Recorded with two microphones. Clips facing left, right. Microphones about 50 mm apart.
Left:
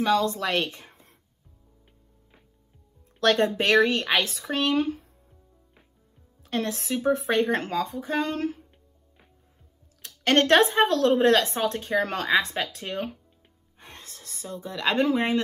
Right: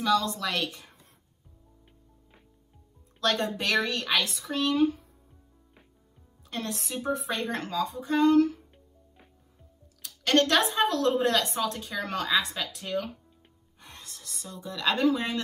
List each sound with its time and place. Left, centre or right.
0.0 s a woman's voice: left
3.2 s speech: left
6.4 s a woman's voice: left
10.0 s speech: left
13.7 s a sound: left